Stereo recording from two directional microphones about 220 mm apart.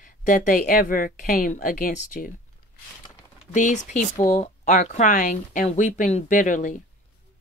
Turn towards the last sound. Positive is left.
turn(degrees=35)  # may be behind; listen again after turning